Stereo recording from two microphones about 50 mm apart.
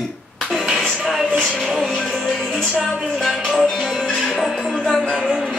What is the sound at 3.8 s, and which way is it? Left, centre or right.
Music, centre.